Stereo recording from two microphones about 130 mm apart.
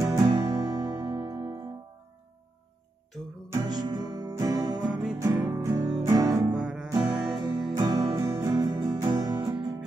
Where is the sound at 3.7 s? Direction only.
30° right (ahead or behind).